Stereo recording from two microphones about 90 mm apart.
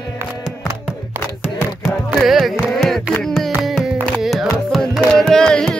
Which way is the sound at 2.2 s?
Centre (ahead or behind).